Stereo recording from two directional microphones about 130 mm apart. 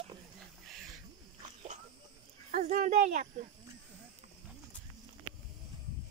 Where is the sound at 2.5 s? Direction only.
75° right (ahead or behind).